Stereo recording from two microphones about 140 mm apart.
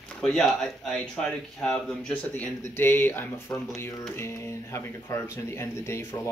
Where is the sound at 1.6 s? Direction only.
10° left (ahead or behind).